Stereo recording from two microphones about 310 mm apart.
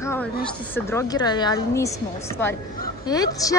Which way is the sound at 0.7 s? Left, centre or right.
Centre.